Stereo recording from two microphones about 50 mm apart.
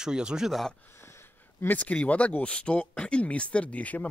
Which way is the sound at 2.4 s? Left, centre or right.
Left.